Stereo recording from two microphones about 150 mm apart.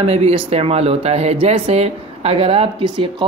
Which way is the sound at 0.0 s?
40° right (ahead or behind).